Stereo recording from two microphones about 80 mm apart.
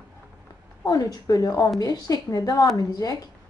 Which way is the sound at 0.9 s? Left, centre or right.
Left.